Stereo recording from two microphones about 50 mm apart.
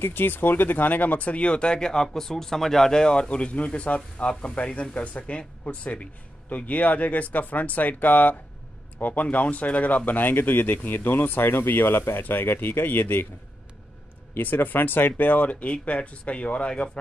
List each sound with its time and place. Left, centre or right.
0.0 s speech: left
14.3 s speech: left; by 17.0 s centre